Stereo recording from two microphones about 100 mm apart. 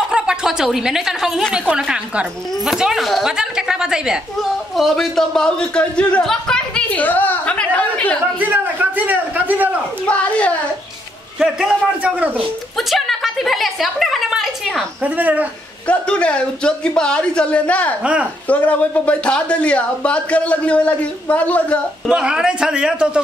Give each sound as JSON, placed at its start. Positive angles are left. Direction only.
{"t": 0.1, "sound": "a woman's voice", "side_deg": -5}
{"t": 8.4, "sound": "a sound", "side_deg": -15}
{"t": 10.0, "sound": "speech", "side_deg": 15}
{"t": 11.3, "sound": "a man's voice", "side_deg": -5}
{"t": 12.7, "sound": "a woman's voice", "side_deg": 0}
{"t": 15.0, "sound": "a man's voice", "side_deg": -15}
{"t": 15.9, "sound": "speech", "side_deg": 10}
{"t": 18.0, "sound": "a man's voice", "side_deg": -10}
{"t": 18.5, "sound": "speech", "side_deg": 15}
{"t": 22.1, "sound": "a man's voice", "side_deg": -10}